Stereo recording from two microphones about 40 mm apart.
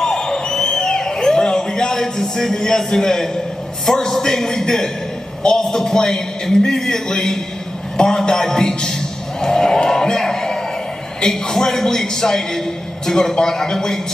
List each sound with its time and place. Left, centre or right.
0.0 s a sound: centre
3.8 s a man's voice: centre
9.4 s music: centre
11.1 s a man's voice: centre